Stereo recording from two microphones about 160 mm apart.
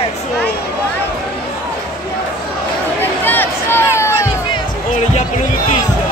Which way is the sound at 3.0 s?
10° left (ahead or behind).